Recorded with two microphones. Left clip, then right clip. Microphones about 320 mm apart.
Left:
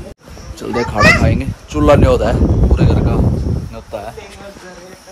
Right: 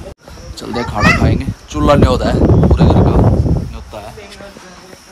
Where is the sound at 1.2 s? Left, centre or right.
Centre.